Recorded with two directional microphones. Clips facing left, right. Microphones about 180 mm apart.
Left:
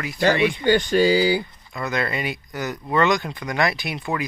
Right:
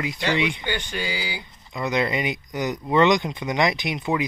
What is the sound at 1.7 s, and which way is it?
Speech, 20° right (ahead or behind).